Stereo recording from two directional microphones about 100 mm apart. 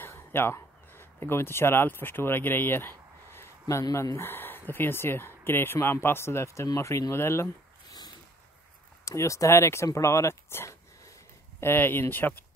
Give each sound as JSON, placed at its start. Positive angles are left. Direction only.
{"t": 0.0, "sound": "speech", "side_deg": 20}
{"t": 9.0, "sound": "speech", "side_deg": 30}